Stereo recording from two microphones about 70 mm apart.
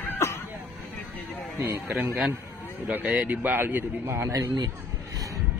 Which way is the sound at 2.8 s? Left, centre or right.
Right.